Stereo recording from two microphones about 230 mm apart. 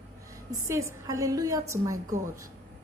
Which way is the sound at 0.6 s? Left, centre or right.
Centre.